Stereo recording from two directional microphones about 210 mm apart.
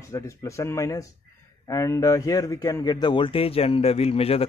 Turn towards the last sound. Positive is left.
turn(degrees=30)  # may be behind; listen again after turning